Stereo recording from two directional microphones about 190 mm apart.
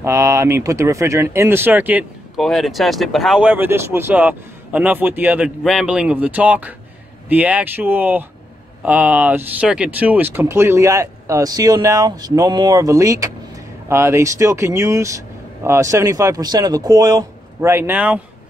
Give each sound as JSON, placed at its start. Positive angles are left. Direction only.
{"t": 0.0, "sound": "speech", "side_deg": -15}